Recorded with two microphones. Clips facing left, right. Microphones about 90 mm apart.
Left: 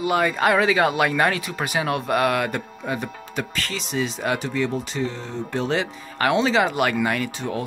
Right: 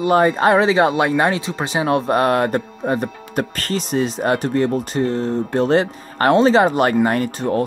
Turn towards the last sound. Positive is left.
turn(degrees=-45)  # may be behind; listen again after turning